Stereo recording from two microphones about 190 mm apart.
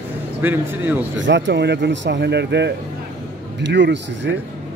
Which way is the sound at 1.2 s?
70° right (ahead or behind).